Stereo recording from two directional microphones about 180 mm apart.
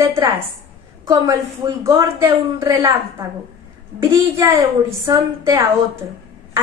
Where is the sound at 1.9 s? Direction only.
15° right (ahead or behind).